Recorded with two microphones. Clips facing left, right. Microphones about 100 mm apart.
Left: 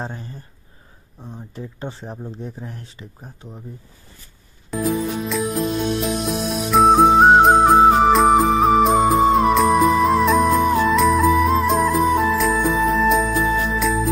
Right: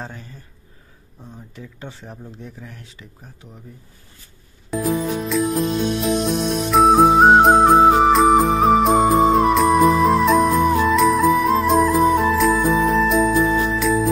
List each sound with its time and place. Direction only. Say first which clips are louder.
0.0 s speech: left 4 dB; 30° left (ahead or behind)
1.5 s speech: left 6 dB; 35° left (ahead or behind)
4.7 s music: right 1 dB; centre (ahead or behind)